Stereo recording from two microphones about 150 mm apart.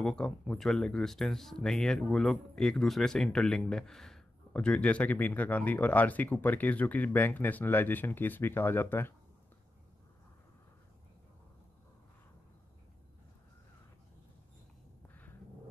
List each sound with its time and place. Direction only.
0.0 s speech: 5° left (ahead or behind)